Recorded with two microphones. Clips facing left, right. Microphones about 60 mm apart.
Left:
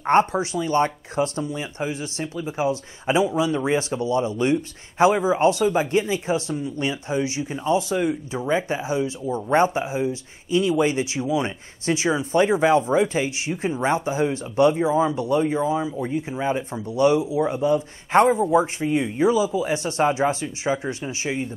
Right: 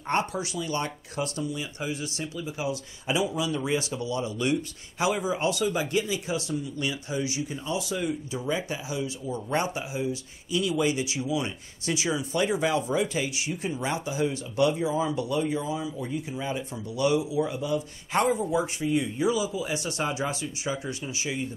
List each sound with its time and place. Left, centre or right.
0.0 s speech: left